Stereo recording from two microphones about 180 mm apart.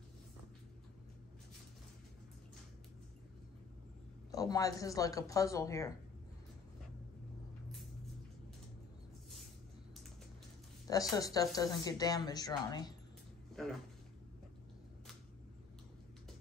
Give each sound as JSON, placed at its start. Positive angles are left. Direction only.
{"t": 4.3, "sound": "a woman's voice", "side_deg": 20}
{"t": 10.9, "sound": "a woman's voice", "side_deg": 20}